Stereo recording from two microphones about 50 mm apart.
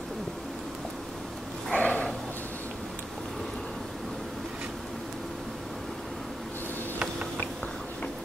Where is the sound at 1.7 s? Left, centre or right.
Left.